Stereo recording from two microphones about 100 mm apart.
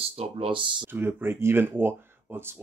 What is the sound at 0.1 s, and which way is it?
Speech, 80° right.